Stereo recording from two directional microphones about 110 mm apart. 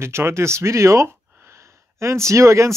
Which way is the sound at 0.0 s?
25° right (ahead or behind).